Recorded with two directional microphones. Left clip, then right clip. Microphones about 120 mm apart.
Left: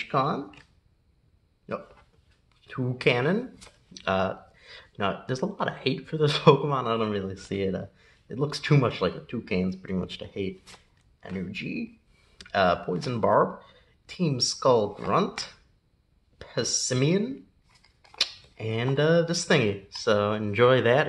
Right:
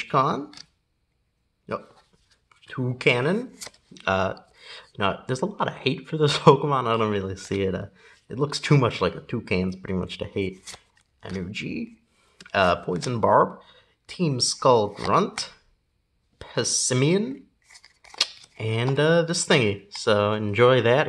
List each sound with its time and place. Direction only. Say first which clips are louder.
0.0 s speech: right 4 dB; 40° right (ahead or behind)
1.7 s speech: right 3 dB; 40° right (ahead or behind)
2.6 s speech: right 2 dB; 20° right (ahead or behind)